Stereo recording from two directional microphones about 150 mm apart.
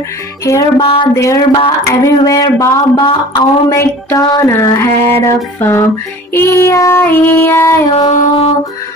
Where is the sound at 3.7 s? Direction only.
20° left (ahead or behind).